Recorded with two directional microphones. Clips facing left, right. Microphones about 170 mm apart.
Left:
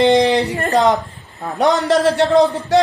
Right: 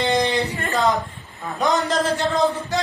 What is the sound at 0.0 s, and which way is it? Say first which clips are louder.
Speech: left 8 dB; 80° left.